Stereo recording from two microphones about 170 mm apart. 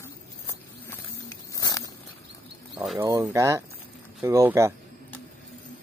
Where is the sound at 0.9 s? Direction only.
20° left (ahead or behind).